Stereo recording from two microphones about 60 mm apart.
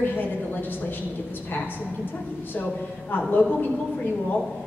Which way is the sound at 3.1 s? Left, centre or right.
Left.